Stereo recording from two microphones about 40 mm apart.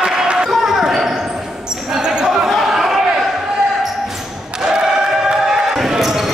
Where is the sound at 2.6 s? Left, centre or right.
Centre.